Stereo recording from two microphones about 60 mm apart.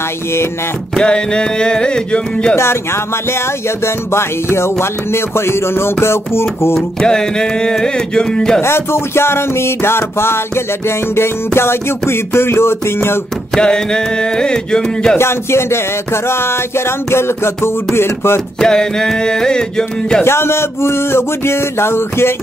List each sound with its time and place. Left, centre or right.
0.9 s music: centre
2.5 s music: left
7.0 s music: centre
8.5 s music: left
13.6 s music: centre
15.1 s music: left
18.6 s music: centre
20.2 s music: left